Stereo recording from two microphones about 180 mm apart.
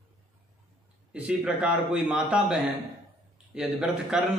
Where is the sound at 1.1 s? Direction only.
5° right (ahead or behind).